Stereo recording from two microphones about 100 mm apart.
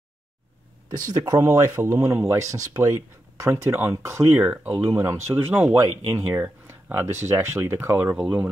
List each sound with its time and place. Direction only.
1.1 s speech: 40° right (ahead or behind)
1.4 s speech: 30° right (ahead or behind)